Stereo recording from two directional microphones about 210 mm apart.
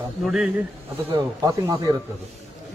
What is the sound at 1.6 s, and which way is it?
Speech, 15° right (ahead or behind).